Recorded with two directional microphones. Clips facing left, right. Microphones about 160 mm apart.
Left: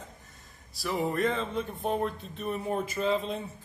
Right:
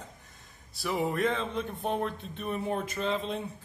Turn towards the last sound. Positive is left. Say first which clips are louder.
# left 2 dB
turn(degrees=0)  # may be behind; listen again after turning